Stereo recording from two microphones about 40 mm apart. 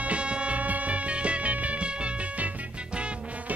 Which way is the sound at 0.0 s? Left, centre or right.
Right.